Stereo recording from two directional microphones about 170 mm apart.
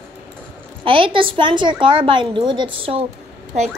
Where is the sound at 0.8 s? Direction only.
30° right (ahead or behind).